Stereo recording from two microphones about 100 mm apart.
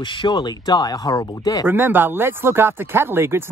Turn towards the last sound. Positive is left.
turn(degrees=-25)  # may be behind; listen again after turning